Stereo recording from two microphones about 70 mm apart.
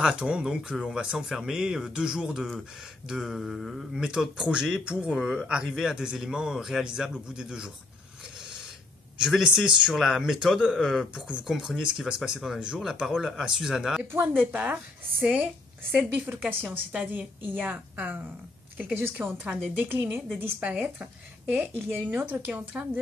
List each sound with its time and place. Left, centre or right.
0.0 s a man's voice: centre
4.0 s a man's voice: centre
9.3 s a man's voice: centre
14.1 s a woman's voice: right
19.2 s speech: right
20.8 s a woman's voice: centre